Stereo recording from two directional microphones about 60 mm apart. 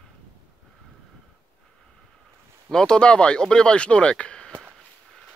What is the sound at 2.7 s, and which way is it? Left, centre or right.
Speech, centre.